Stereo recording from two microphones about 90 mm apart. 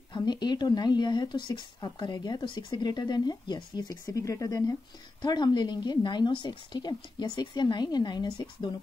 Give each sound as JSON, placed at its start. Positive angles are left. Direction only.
{"t": 0.1, "sound": "speech", "side_deg": 50}
{"t": 4.0, "sound": "speech", "side_deg": 35}
{"t": 5.2, "sound": "speech", "side_deg": 55}